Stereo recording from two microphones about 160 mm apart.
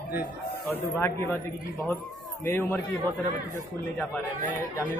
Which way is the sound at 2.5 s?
15° left (ahead or behind).